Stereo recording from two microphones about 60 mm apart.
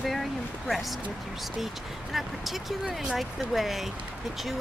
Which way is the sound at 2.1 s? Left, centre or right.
Centre.